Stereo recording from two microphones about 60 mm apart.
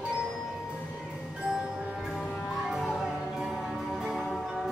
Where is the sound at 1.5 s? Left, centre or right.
Centre.